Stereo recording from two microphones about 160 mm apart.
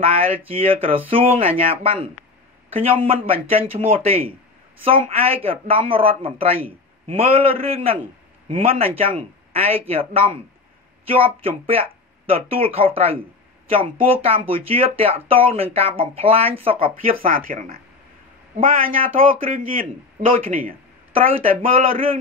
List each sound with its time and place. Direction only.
0.5 s speech: 35° right (ahead or behind)
17.3 s a man's voice: 65° right (ahead or behind)
21.1 s speech: 35° right (ahead or behind)